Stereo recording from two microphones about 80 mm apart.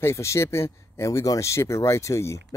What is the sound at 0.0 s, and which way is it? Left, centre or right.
Speech, left.